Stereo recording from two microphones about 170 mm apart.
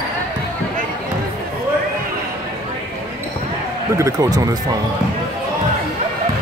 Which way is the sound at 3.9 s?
20° right (ahead or behind).